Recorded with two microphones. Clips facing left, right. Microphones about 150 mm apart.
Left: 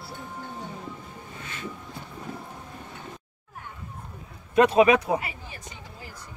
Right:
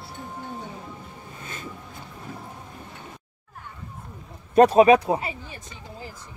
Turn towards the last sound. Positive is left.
turn(degrees=-30)  # may be behind; listen again after turning